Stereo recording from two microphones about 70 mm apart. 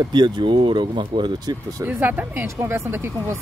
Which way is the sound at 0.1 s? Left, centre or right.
Right.